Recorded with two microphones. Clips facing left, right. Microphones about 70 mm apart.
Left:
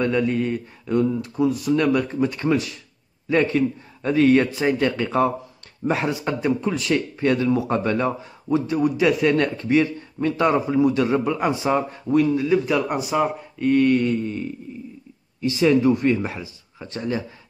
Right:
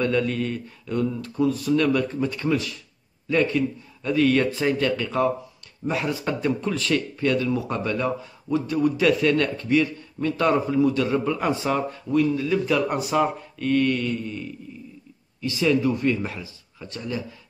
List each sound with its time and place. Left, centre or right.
0.0 s a man's voice: centre
6.2 s a man's voice: centre
13.6 s a man's voice: left